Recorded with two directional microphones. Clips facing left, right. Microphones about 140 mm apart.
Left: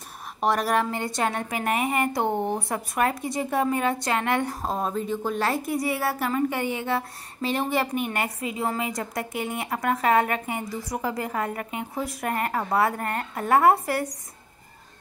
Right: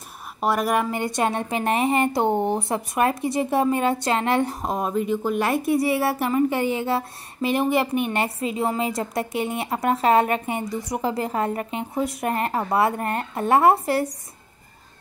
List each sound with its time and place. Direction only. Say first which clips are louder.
0.4 s a woman's voice: right 1 dB; 5° right (ahead or behind); by 4.6 s 25° right (ahead or behind)
4.6 s a woman's voice: right 3 dB; 10° right (ahead or behind)
5.7 s a woman's voice: right 5 dB; 25° right (ahead or behind)